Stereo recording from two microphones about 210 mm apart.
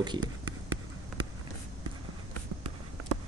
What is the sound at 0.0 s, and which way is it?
Speech, 20° right (ahead or behind).